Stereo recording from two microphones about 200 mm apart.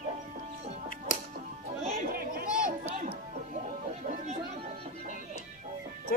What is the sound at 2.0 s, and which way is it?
Chatter, 45° right (ahead or behind).